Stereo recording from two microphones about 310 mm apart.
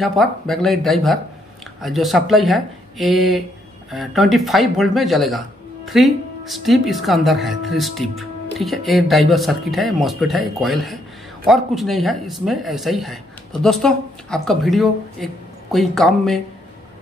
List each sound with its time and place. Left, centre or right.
0.0 s speech: centre